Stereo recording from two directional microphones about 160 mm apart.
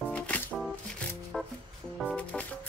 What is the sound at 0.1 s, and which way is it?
Music, 10° left (ahead or behind).